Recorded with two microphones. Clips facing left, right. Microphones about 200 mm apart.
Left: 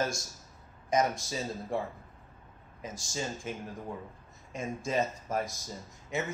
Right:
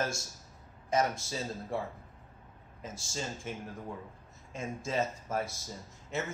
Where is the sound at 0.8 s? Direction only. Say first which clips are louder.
Left 2 dB; 15° left (ahead or behind).